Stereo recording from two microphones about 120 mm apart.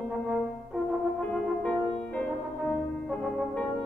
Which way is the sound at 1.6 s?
10° left (ahead or behind).